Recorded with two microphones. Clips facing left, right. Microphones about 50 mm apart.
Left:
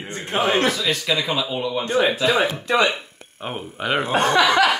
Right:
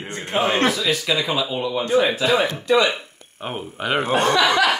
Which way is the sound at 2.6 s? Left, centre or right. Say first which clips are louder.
Right 2 dB; left.